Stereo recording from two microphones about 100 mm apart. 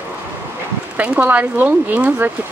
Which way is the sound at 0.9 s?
15° right (ahead or behind).